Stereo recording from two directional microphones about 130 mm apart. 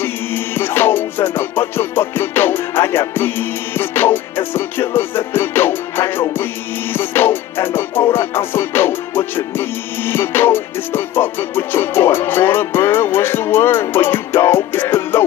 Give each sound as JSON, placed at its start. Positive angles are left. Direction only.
{"t": 0.0, "sound": "music", "side_deg": 15}